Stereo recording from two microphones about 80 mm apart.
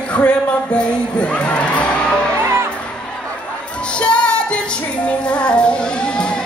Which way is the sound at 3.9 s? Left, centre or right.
Centre.